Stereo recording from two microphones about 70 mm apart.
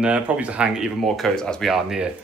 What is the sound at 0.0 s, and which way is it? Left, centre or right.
Speech, centre.